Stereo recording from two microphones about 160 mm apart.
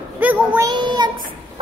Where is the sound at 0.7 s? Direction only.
25° right (ahead or behind).